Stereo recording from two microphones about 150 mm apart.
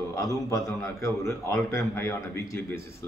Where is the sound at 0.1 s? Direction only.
20° left (ahead or behind).